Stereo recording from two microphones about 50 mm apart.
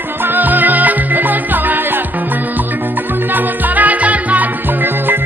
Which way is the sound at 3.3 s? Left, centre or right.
Right.